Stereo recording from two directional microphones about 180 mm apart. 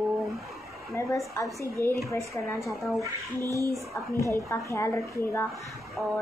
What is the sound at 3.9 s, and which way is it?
Speech, 15° left (ahead or behind).